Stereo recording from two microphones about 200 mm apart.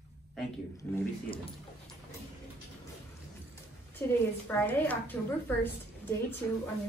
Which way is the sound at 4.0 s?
15° left (ahead or behind).